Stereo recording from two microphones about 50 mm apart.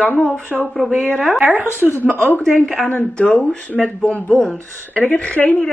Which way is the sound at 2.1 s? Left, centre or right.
Left.